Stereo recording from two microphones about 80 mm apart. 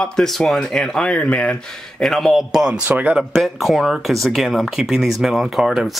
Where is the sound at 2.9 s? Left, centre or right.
Centre.